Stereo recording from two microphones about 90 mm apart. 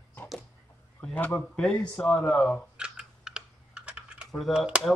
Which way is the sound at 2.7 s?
10° right (ahead or behind).